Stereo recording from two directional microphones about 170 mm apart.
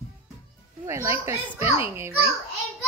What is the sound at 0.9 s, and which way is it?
Speech, 15° right (ahead or behind).